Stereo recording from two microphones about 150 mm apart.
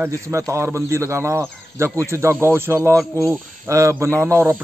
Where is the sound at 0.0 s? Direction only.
20° right (ahead or behind).